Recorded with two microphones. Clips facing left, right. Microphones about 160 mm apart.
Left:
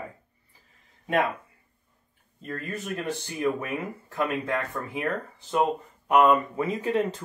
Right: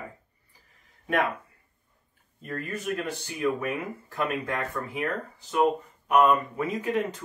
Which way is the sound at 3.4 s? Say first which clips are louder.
Right 1 dB; 25° left (ahead or behind).